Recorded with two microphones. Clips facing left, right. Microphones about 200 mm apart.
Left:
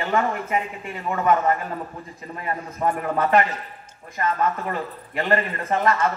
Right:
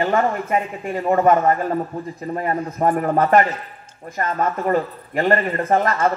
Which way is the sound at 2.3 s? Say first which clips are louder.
Right 6 dB; 45° right (ahead or behind).